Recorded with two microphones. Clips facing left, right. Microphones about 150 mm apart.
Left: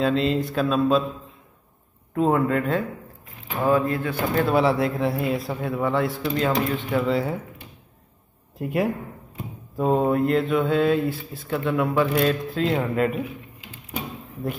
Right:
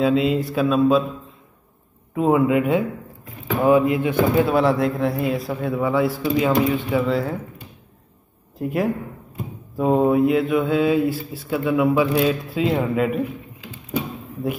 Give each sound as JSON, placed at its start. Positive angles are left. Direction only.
{"t": 0.0, "sound": "speech", "side_deg": -5}
{"t": 2.1, "sound": "speech", "side_deg": -10}
{"t": 4.5, "sound": "speech", "side_deg": 0}
{"t": 8.5, "sound": "speech", "side_deg": 0}